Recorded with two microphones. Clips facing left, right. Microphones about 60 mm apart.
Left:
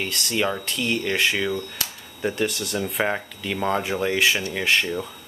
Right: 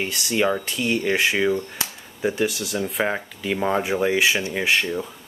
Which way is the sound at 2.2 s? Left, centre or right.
Centre.